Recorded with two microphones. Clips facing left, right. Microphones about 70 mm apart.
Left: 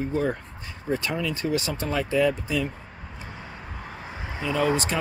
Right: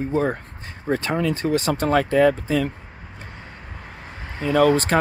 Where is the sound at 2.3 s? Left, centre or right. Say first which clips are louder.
Right 5 dB; right.